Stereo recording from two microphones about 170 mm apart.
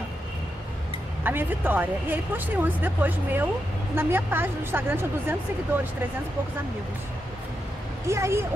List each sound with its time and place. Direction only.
1.2 s speech: 10° right (ahead or behind)
8.1 s speech: 15° right (ahead or behind)